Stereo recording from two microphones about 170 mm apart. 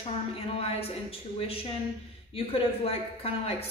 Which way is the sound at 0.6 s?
35° left (ahead or behind).